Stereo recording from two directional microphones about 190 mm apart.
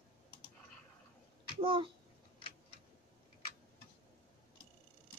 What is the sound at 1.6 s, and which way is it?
Speech, 25° right (ahead or behind).